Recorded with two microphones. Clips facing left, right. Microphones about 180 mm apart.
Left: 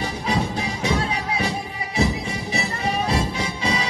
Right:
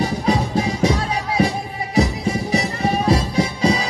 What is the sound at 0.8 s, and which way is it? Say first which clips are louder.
Music: right 4 dB; 40° right (ahead or behind).